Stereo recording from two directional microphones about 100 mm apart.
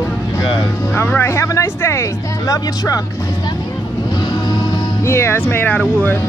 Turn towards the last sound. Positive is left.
turn(degrees=15)  # may be behind; listen again after turning